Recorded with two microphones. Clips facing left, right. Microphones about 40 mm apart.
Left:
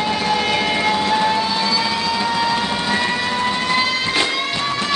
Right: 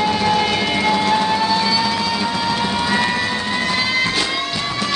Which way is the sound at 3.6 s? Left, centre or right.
Centre.